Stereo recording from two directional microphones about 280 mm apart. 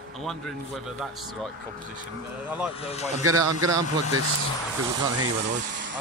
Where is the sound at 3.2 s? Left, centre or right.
Right.